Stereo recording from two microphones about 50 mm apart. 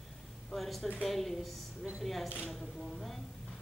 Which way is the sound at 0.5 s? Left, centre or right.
Centre.